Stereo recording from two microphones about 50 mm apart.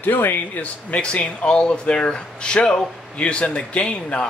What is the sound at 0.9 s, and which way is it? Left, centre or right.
A man's voice, left.